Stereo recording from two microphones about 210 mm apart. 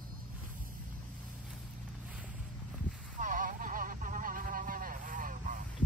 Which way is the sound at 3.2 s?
40° right (ahead or behind).